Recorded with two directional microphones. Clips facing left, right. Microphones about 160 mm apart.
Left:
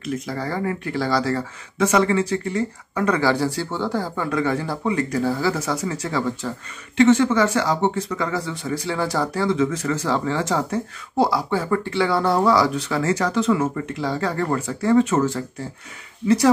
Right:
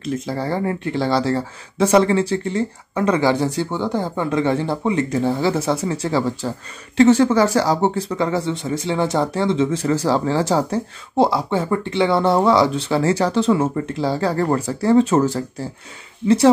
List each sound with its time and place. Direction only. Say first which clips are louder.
0.0 s speech: right 3 dB; 30° right (ahead or behind)